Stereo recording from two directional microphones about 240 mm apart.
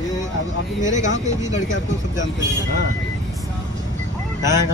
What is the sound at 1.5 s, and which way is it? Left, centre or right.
Speech, left.